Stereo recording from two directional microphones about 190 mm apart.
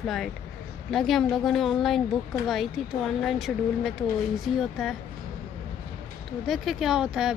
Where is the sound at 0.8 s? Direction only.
Centre (ahead or behind).